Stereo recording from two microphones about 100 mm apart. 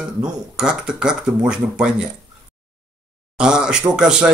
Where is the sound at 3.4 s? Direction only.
10° right (ahead or behind).